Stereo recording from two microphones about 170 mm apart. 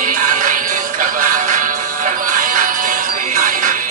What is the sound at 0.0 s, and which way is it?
Music, 50° right (ahead or behind).